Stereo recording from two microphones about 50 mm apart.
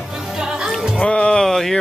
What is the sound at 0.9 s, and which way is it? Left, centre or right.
Speech, centre.